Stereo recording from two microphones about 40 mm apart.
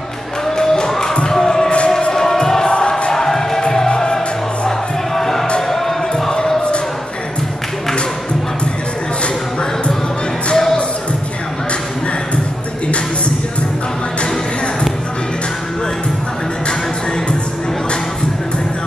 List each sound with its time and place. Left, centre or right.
0.6 s music: centre
10.5 s music: centre